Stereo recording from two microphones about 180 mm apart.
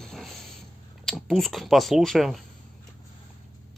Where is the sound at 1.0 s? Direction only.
Centre (ahead or behind).